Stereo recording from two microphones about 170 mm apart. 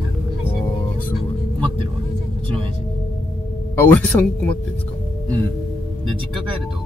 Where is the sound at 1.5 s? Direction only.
30° right (ahead or behind).